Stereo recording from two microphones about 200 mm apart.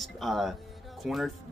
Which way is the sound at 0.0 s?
Centre (ahead or behind).